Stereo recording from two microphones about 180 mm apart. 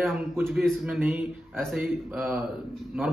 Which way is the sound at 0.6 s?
5° right (ahead or behind).